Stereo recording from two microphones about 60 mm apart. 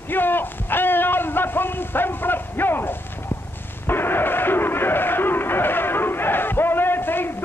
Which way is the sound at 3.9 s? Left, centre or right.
Left.